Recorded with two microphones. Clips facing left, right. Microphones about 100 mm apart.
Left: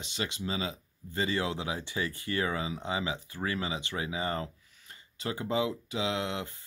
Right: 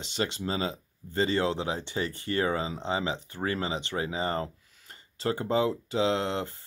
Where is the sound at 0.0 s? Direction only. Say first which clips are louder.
Right 4 dB; 35° right (ahead or behind).